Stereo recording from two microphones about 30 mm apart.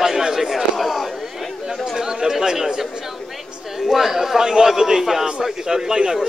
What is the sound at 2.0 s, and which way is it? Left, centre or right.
A man's voice, centre.